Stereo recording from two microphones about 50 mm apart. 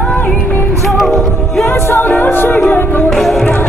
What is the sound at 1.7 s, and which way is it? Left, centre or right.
Music, left.